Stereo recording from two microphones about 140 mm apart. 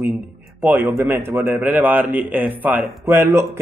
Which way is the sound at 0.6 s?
15° right (ahead or behind).